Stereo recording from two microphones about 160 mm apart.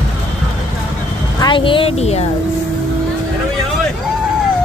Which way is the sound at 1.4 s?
30° left (ahead or behind).